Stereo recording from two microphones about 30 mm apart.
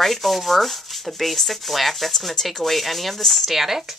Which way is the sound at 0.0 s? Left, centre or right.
Centre.